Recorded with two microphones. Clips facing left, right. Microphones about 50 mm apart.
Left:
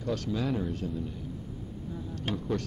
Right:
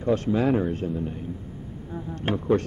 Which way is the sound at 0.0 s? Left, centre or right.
Right.